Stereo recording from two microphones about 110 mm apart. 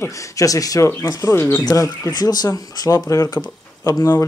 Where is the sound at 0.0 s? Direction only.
30° left (ahead or behind).